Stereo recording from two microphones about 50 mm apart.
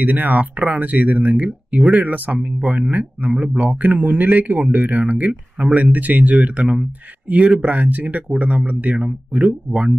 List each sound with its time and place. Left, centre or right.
0.0 s speech: right